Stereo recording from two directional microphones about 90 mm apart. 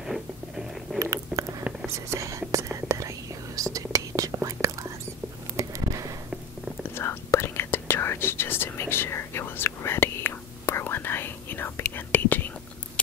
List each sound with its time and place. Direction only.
0.0 s a sound: 5° right (ahead or behind)
0.9 s biting: 5° left (ahead or behind)
1.3 s whispering: 10° right (ahead or behind)
2.0 s whispering: 35° right (ahead or behind)
5.6 s a sound: 35° right (ahead or behind)
7.0 s whispering: 30° left (ahead or behind)